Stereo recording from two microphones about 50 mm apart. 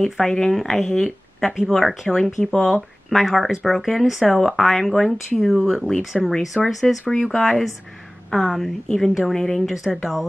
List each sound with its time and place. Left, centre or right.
0.0 s speech: centre